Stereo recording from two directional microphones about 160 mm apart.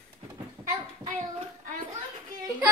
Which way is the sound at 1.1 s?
45° right (ahead or behind).